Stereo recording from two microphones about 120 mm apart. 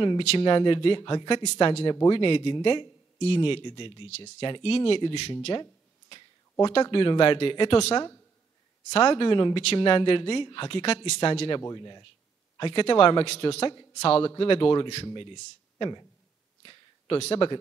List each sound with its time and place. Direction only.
0.4 s a woman's voice: 45° left (ahead or behind)
5.5 s a sound: 35° left (ahead or behind)
6.6 s a woman's voice: 45° left (ahead or behind)
11.6 s a woman's voice: 35° left (ahead or behind)
12.5 s a woman's voice: 45° left (ahead or behind)
17.2 s speech: 50° left (ahead or behind)